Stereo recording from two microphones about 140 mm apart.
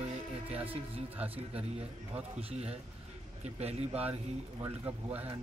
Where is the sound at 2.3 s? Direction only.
45° right (ahead or behind).